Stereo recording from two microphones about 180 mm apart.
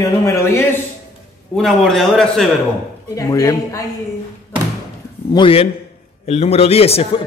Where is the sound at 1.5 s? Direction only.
Centre (ahead or behind).